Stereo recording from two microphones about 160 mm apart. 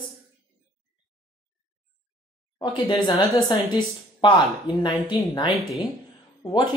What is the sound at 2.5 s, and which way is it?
Speech, 25° left (ahead or behind).